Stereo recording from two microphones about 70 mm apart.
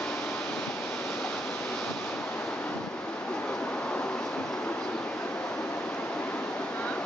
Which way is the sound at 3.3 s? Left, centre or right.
Centre.